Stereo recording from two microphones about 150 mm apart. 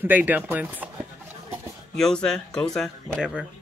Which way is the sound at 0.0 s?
10° right (ahead or behind).